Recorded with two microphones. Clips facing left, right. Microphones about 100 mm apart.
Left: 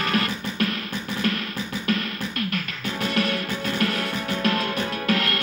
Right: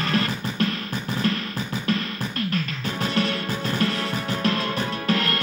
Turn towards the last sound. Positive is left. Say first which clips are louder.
# even
turn(degrees=-35)  # may be behind; listen again after turning